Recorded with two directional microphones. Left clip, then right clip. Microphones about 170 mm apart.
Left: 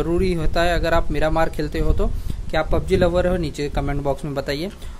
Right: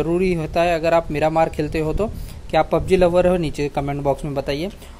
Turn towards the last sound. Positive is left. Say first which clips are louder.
# right 1 dB
turn(degrees=-10)  # may be behind; listen again after turning